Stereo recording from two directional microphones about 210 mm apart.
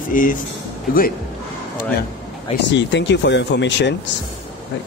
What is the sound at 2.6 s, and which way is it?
Speech, 55° left (ahead or behind).